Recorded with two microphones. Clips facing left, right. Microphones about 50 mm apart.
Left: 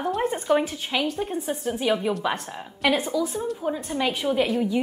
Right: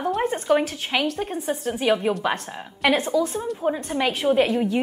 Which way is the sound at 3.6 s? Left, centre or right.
Right.